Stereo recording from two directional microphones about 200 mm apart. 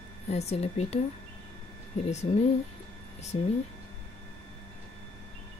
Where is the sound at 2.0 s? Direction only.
35° left (ahead or behind).